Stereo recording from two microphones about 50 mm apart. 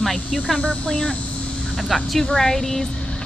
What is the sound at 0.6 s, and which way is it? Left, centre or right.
Speech, left.